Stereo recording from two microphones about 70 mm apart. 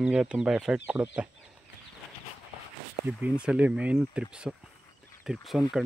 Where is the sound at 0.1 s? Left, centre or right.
Centre.